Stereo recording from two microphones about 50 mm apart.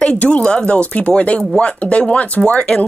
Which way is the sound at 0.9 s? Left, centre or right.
Left.